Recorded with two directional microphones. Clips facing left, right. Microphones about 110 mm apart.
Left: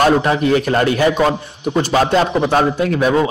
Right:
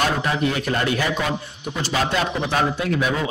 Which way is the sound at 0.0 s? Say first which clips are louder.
Left 8 dB; 45° left (ahead or behind).